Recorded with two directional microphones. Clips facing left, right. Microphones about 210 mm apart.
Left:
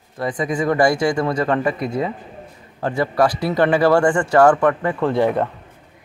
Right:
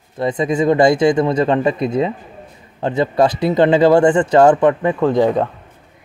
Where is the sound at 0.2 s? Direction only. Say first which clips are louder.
Right 5 dB; 25° right (ahead or behind).